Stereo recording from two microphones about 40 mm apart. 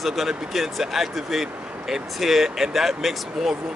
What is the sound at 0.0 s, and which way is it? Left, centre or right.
Speech, centre.